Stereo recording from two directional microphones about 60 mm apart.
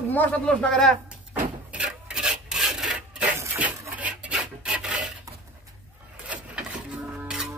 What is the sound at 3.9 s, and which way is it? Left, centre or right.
Filing, right.